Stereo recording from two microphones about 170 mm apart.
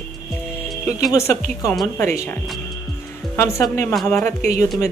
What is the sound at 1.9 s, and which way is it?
Speech, 15° left (ahead or behind).